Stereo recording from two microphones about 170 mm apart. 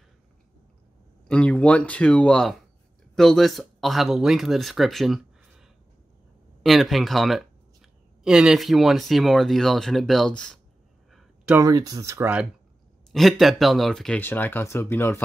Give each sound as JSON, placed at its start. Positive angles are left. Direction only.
{"t": 1.2, "sound": "speech", "side_deg": 5}
{"t": 11.1, "sound": "a sound", "side_deg": 0}
{"t": 11.5, "sound": "speech", "side_deg": -20}
{"t": 13.1, "sound": "speech", "side_deg": 0}